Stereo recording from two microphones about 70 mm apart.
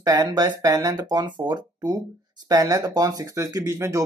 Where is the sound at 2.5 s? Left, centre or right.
Right.